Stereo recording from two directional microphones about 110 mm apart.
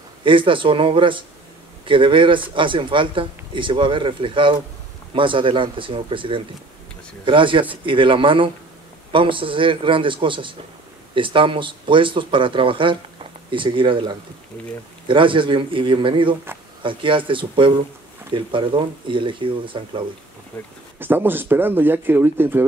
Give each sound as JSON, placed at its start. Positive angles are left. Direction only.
{"t": 0.2, "sound": "speech", "side_deg": -50}
{"t": 21.0, "sound": "speech", "side_deg": -20}